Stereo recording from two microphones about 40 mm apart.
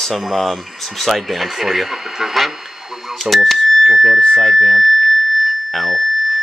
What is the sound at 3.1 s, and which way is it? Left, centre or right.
Cash register, centre.